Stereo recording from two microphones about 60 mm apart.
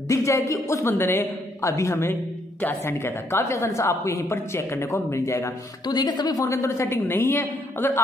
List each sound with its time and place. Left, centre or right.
0.1 s a woman's voice: left
0.8 s a woman's voice: left
1.6 s a woman's voice: left
2.8 s a woman's voice: left
6.2 s a woman's voice: left
6.5 s a woman's voice: left
7.0 s a woman's voice: left